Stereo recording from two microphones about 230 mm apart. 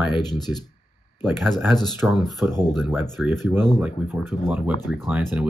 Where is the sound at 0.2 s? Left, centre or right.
Centre.